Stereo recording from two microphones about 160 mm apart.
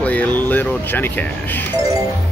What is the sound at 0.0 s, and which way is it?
Speech, 10° left (ahead or behind).